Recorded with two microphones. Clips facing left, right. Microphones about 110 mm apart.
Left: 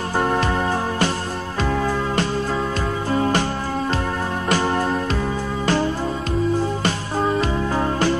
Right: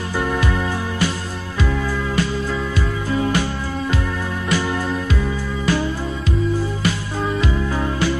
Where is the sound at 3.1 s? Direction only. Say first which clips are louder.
Even; 40° left (ahead or behind).